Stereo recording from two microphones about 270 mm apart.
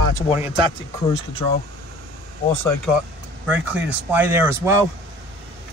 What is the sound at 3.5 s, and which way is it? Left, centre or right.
Speech, centre.